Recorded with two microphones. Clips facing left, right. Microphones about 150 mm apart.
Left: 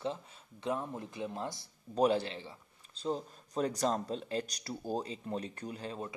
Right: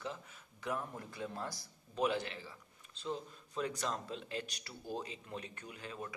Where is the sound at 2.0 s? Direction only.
35° left (ahead or behind).